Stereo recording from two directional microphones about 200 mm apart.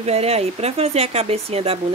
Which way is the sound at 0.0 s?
30° right (ahead or behind).